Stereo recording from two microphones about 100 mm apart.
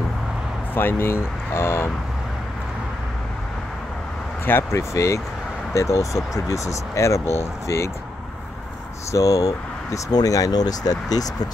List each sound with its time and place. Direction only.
0.7 s speech: 20° left (ahead or behind)
4.5 s speech: 25° left (ahead or behind)
9.1 s speech: 35° left (ahead or behind)